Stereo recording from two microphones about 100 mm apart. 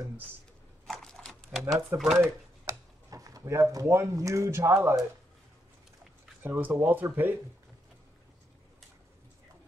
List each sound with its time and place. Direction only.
0.8 s typewriter: 5° left (ahead or behind)
1.6 s speech: 30° right (ahead or behind)
2.0 s speech: centre (ahead or behind)
2.6 s speech: 35° right (ahead or behind)
6.4 s speech: 20° right (ahead or behind)